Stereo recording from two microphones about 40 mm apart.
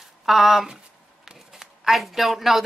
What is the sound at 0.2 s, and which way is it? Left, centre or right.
Speech, centre.